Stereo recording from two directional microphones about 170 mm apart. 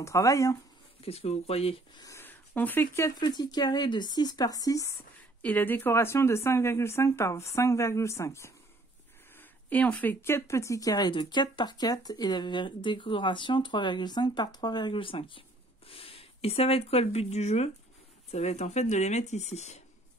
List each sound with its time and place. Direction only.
0.0 s speech: 20° left (ahead or behind)
1.0 s speech: 35° left (ahead or behind)
2.0 s speech: 15° left (ahead or behind)
3.2 s speech: 25° left (ahead or behind); by 19.8 s 40° left (ahead or behind)